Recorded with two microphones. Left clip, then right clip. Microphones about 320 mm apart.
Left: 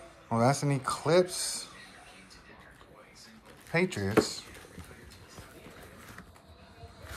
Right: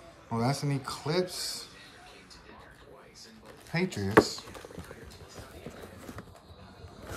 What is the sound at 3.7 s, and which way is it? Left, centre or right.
Speech, centre.